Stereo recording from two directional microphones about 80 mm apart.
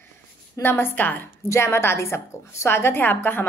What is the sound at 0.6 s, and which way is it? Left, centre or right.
A woman's voice, left.